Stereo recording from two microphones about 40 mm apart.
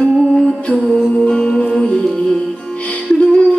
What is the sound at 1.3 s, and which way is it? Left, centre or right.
Music, left.